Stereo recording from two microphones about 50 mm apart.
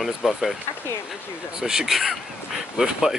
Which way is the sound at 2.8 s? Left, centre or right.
Centre.